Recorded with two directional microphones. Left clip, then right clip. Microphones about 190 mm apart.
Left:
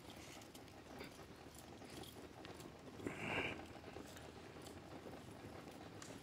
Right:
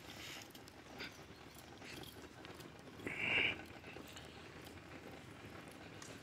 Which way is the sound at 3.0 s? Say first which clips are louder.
Right 7 dB; 30° left (ahead or behind).